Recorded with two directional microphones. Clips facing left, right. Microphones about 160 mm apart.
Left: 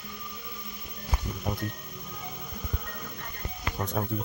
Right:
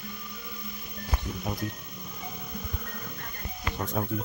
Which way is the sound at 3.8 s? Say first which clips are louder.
Even; centre (ahead or behind).